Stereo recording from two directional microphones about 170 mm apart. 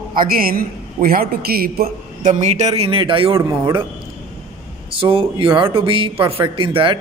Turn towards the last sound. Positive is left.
turn(degrees=-30)  # may be behind; listen again after turning